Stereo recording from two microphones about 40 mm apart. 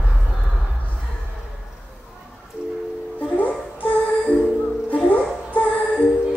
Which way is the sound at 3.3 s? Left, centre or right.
Left.